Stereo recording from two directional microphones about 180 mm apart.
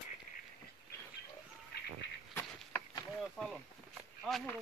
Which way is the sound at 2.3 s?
15° left (ahead or behind).